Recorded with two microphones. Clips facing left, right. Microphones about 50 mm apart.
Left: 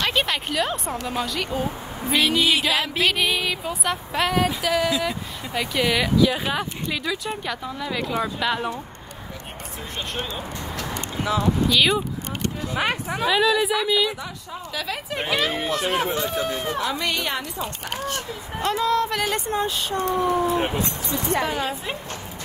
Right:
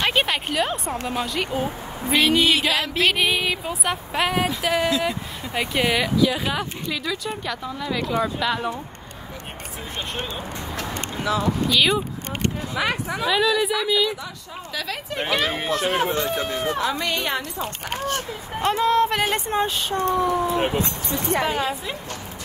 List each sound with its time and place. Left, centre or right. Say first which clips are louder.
0.0 s a sound: right 2 dB; centre
1.1 s a woman's voice: right 1 dB; centre
2.1 s a woman's voice: right 2 dB; centre
3.1 s speech: right 3 dB; centre
6.9 s a woman's voice: even; centre
11.7 s a woman's voice: right 1 dB; centre
13.3 s a woman's voice: left 1 dB; centre
15.4 s speech: right 1 dB; right
20.2 s speech: left 1 dB; left
20.5 s speech: right 1 dB; right